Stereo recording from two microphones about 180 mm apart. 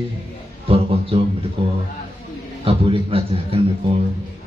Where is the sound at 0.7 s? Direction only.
30° right (ahead or behind).